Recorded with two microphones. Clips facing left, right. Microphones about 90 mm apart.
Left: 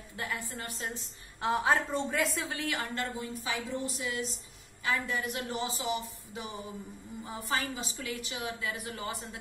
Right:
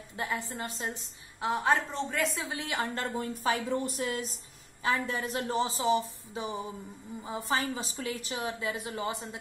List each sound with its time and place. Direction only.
0.1 s a woman's voice: 25° right (ahead or behind)
1.4 s a woman's voice: centre (ahead or behind)
2.5 s a woman's voice: 20° right (ahead or behind)
2.9 s a woman's voice: 40° right (ahead or behind)
4.8 s a woman's voice: 35° right (ahead or behind)